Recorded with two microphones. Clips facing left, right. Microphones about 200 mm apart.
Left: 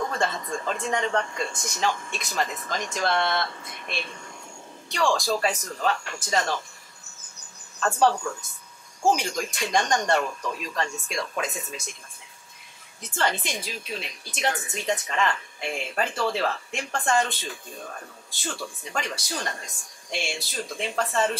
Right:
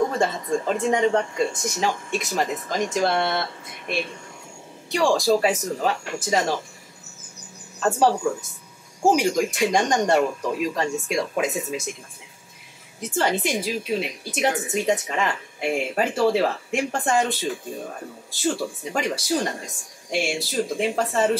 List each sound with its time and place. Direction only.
0.2 s speech: 15° right (ahead or behind)
8.2 s speech: 20° right (ahead or behind)
9.1 s speech: 5° right (ahead or behind)
13.0 s speech: 5° right (ahead or behind)